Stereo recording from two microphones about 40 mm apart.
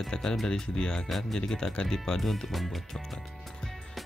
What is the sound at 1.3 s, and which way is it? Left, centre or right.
Speech, centre.